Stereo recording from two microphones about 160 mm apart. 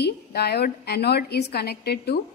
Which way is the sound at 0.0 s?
80° left.